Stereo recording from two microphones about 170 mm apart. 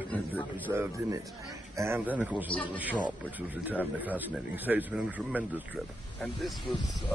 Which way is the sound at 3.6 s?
10° right (ahead or behind).